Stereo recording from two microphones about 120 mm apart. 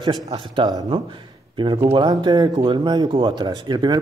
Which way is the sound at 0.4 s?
45° right (ahead or behind).